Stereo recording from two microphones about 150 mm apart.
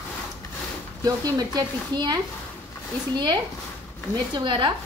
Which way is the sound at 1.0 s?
25° right (ahead or behind).